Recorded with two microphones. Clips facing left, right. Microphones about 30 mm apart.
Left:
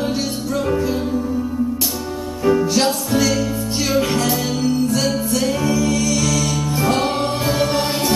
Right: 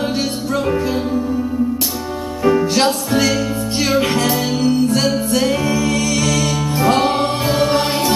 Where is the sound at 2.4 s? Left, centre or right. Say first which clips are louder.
Right 2 dB; centre.